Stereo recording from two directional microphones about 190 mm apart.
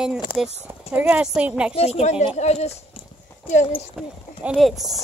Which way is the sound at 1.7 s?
30° left (ahead or behind).